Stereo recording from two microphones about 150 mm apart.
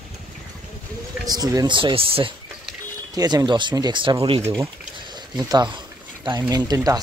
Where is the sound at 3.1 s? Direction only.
25° right (ahead or behind).